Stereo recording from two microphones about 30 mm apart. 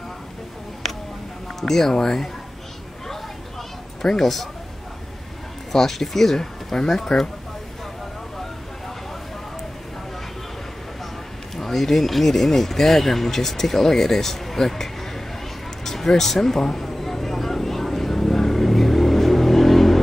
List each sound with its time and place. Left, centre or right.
0.8 s a sound: centre
1.6 s speech: centre
4.0 s speech: centre
5.7 s speech: centre
11.5 s speech: centre
15.8 s a sound: centre